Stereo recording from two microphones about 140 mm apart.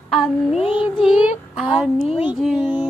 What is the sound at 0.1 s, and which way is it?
Child singing, centre (ahead or behind).